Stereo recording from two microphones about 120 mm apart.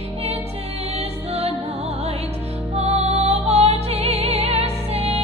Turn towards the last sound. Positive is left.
turn(degrees=-55)  # may be behind; listen again after turning